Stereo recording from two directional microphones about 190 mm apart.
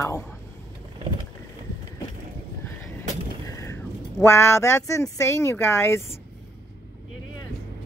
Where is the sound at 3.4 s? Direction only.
15° left (ahead or behind).